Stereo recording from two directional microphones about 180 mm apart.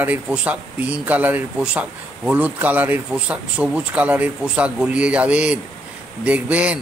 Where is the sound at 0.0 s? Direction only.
10° right (ahead or behind).